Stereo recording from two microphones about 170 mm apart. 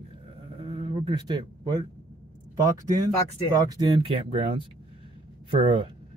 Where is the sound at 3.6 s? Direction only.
30° right (ahead or behind).